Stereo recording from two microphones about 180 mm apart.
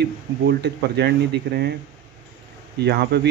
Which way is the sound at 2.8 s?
65° right (ahead or behind).